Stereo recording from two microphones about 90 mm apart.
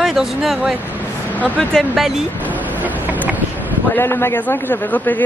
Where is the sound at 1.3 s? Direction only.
15° left (ahead or behind).